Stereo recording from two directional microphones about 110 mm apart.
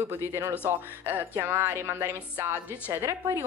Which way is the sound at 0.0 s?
20° right (ahead or behind).